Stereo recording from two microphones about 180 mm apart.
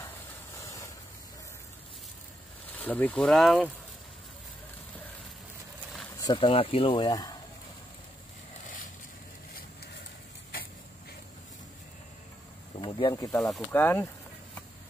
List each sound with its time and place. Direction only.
0.6 s a sound: 15° left (ahead or behind)
2.7 s speech: 10° left (ahead or behind)
6.1 s speech: 25° left (ahead or behind)
12.8 s speech: 25° left (ahead or behind)
13.3 s speech: 5° left (ahead or behind)